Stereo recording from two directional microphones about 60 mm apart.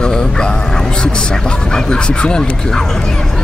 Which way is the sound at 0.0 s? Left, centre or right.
Centre.